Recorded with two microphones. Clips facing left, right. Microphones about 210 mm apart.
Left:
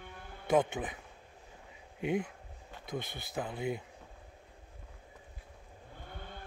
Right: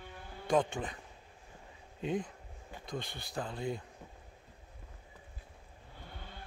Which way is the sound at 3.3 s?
5° left (ahead or behind).